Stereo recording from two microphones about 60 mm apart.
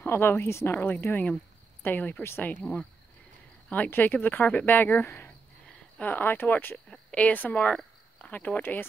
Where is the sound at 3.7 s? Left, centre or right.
Left.